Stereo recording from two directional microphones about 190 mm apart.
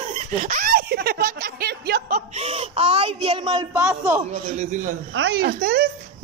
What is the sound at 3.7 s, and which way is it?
Speech, 10° right (ahead or behind).